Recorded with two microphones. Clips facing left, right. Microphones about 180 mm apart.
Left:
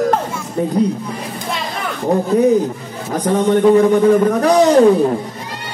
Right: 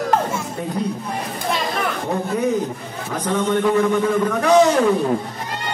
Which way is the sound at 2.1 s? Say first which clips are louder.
Left 9 dB; 35° left (ahead or behind).